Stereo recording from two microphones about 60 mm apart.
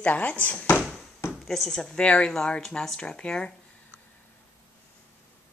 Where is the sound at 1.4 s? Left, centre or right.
Centre.